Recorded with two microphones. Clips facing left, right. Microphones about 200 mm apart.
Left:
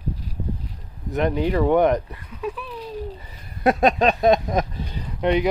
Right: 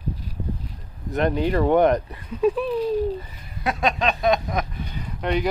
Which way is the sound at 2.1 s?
25° right (ahead or behind).